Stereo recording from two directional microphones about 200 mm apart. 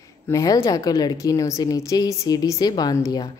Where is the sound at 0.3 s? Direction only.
15° left (ahead or behind).